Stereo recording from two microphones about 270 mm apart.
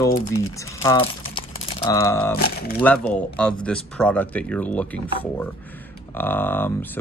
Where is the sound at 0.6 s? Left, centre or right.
Centre.